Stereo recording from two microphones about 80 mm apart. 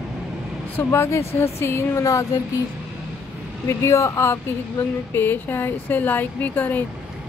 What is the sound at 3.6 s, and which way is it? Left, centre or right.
Speech, left.